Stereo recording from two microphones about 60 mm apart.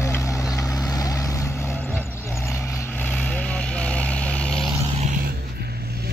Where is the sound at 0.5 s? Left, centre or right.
Left.